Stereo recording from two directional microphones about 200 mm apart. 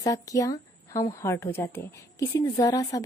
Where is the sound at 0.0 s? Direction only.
15° left (ahead or behind).